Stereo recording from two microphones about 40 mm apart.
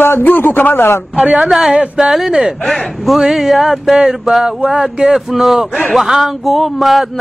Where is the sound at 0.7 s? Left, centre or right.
Left.